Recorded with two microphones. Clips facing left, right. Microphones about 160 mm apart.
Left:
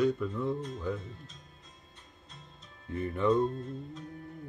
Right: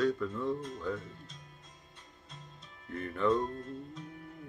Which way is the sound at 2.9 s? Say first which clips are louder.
Left 2 dB; 15° left (ahead or behind).